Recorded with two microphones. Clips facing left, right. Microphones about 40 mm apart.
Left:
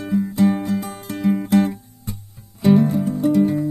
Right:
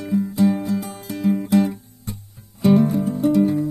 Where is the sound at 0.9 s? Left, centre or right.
Left.